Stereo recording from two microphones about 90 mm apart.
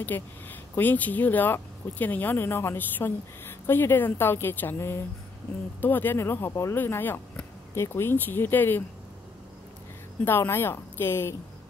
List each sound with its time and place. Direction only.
0.0 s speech: 20° left (ahead or behind)
6.8 s speech: 20° left (ahead or behind)
10.2 s speech: 25° left (ahead or behind)